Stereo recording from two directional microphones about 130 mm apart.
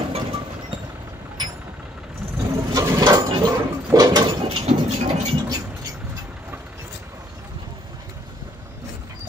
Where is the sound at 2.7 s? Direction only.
30° right (ahead or behind).